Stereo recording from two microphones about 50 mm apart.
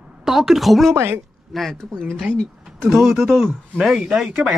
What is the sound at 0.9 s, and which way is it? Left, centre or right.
Speech, right.